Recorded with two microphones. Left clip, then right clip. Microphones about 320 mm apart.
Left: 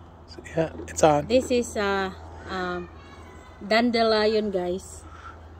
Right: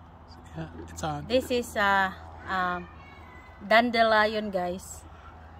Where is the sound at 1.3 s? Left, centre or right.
Centre.